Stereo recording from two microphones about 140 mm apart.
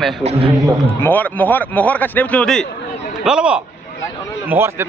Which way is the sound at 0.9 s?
15° left (ahead or behind).